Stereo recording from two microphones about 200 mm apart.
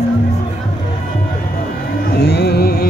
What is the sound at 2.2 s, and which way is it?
Music, 55° left (ahead or behind).